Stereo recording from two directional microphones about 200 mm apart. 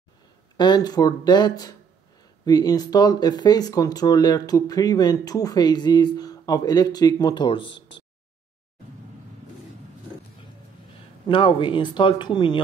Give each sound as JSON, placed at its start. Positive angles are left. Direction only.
{"t": 0.6, "sound": "speech", "side_deg": 20}
{"t": 11.2, "sound": "speech", "side_deg": 25}